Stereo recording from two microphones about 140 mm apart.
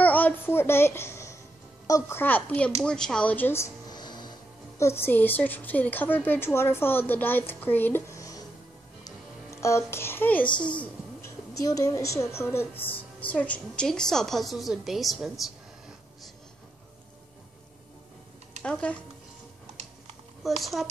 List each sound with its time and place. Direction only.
0.0 s a sound: 10° left (ahead or behind)
1.9 s a woman's voice: 20° left (ahead or behind)
3.9 s music: 30° left (ahead or behind)
4.7 s a woman's voice: 20° left (ahead or behind)
9.0 s music: 20° left (ahead or behind)
10.6 s a woman's voice: 10° left (ahead or behind)
11.2 s a woman's voice: 25° left (ahead or behind); by 15.4 s centre (ahead or behind)
18.6 s speech: 10° left (ahead or behind)
20.4 s a woman's voice: centre (ahead or behind)